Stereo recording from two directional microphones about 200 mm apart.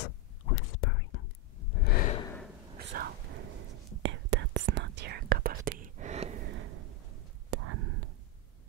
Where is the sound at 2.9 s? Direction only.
45° right (ahead or behind).